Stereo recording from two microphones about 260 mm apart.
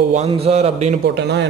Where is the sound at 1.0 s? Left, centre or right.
Right.